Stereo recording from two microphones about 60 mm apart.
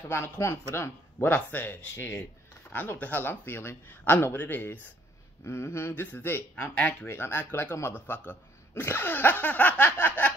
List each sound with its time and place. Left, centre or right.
0.1 s speech: left
1.2 s speech: left
5.4 s speech: left
7.0 s speech: left